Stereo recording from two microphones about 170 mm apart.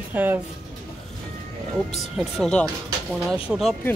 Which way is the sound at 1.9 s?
Centre (ahead or behind).